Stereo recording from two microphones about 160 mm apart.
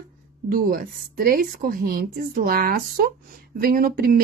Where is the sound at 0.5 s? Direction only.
65° right (ahead or behind).